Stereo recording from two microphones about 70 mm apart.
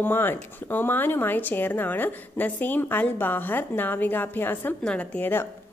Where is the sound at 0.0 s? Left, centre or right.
Left.